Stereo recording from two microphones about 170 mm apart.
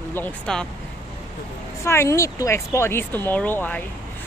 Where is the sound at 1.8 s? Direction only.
15° left (ahead or behind).